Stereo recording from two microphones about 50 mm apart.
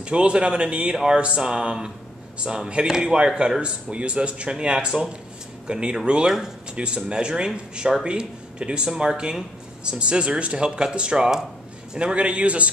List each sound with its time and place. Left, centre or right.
0.0 s speech: right
0.9 s a sound: centre
2.4 s speech: centre